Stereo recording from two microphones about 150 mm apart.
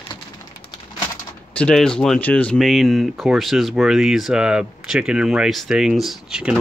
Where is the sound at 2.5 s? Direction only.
Centre (ahead or behind).